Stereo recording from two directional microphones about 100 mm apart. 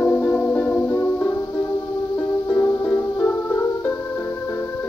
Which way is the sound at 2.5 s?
15° left (ahead or behind).